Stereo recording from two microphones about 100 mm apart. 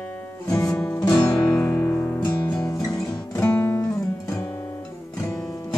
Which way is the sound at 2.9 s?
15° left (ahead or behind).